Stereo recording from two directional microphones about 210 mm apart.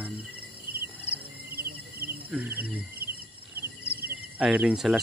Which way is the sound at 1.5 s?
45° right (ahead or behind).